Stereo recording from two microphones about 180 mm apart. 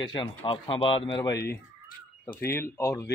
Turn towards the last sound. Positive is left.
turn(degrees=15)  # may be behind; listen again after turning